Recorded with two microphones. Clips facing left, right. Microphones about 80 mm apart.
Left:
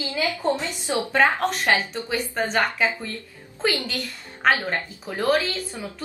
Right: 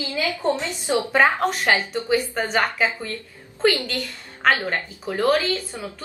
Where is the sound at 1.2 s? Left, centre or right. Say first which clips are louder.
Left 1 dB; centre.